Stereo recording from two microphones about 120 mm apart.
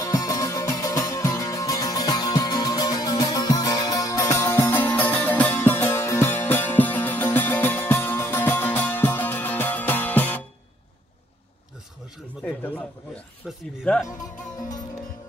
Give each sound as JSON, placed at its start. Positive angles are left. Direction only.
{"t": 0.0, "sound": "music", "side_deg": 30}
{"t": 12.4, "sound": "a sound", "side_deg": 15}
{"t": 13.9, "sound": "speech", "side_deg": 10}